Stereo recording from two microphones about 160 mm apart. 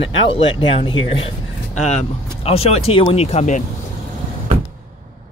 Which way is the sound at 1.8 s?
45° left (ahead or behind).